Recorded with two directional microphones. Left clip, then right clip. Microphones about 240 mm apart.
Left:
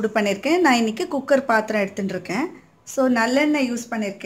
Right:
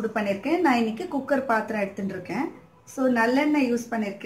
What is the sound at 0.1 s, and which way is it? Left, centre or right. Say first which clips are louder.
A woman's voice: left 5 dB; left.